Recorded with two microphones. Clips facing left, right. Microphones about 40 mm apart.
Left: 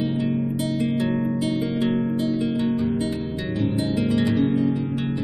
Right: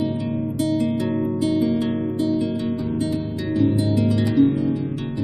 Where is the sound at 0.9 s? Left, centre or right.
Centre.